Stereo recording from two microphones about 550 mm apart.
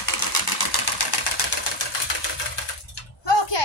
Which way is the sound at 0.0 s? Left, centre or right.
Left.